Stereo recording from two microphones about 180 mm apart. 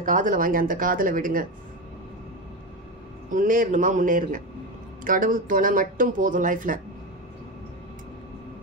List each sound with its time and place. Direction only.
0.0 s speech: 45° right (ahead or behind)
3.3 s speech: 50° right (ahead or behind)